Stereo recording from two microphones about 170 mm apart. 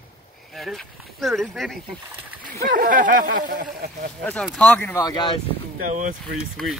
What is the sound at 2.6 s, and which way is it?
Speech, 55° right (ahead or behind).